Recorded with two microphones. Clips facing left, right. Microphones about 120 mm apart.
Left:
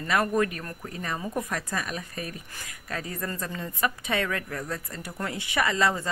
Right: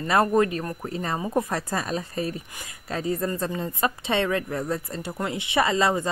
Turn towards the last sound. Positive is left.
turn(degrees=-20)  # may be behind; listen again after turning